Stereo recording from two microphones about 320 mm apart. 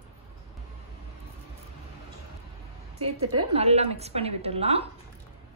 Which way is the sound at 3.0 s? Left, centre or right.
Centre.